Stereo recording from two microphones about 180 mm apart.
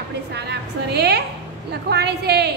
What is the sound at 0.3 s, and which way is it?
A woman's voice, 65° right (ahead or behind).